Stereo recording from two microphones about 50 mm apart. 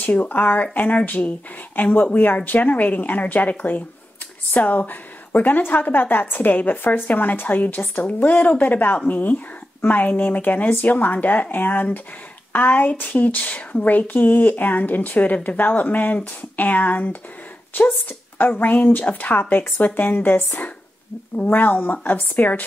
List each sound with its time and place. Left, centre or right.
0.0 s a woman's voice: left